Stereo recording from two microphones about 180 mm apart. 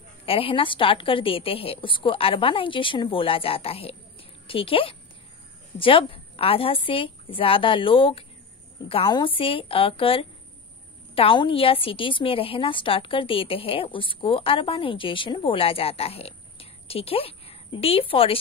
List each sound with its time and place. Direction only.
0.2 s a woman's voice: 30° left (ahead or behind)